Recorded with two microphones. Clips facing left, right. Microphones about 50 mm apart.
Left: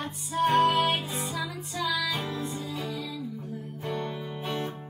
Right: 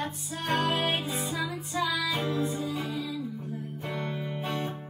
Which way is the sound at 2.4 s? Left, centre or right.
Right.